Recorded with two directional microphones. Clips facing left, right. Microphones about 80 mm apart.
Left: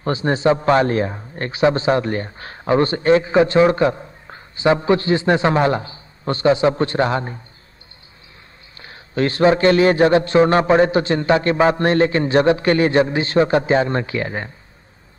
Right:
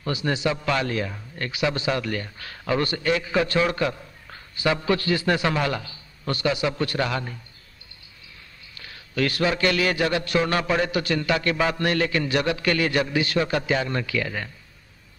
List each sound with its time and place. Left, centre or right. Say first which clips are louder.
0.0 s a man's voice: left 7 dB; left
8.7 s a man's voice: left 5 dB; left